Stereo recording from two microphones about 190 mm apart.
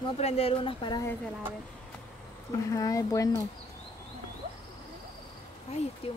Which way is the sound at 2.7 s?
15° left (ahead or behind).